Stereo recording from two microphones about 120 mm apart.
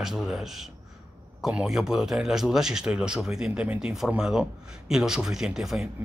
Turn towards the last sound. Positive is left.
turn(degrees=-5)  # may be behind; listen again after turning